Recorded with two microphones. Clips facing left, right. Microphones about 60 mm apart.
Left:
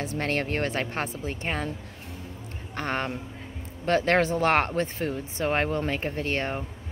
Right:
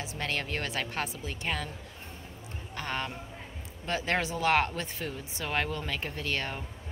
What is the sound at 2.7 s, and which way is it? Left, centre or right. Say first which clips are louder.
Speech: left 6 dB; left.